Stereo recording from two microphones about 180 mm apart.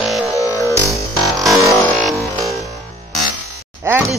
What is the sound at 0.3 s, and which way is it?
Music, 20° left (ahead or behind).